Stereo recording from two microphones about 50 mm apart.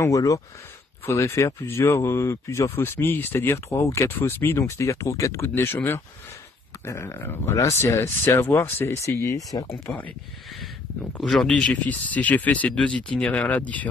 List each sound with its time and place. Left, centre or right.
1.0 s speech: left
2.0 s speech: left
2.4 s speech: left
2.7 s speech: left
4.1 s speech: left
4.6 s speech: left
5.5 s speech: left
6.8 s speech: left
7.4 s speech: left
7.7 s speech: left
8.4 s speech: left
11.1 s speech: centre
11.7 s speech: left